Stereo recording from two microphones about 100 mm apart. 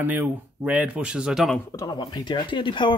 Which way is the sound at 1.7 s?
45° left (ahead or behind).